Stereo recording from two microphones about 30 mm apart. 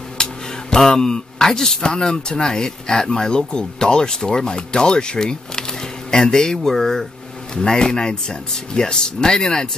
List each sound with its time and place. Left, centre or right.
0.2 s a sound: left
0.7 s speech: centre
7.5 s speech: left